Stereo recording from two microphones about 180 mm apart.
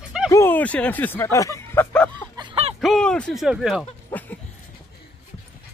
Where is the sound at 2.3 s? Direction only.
30° right (ahead or behind).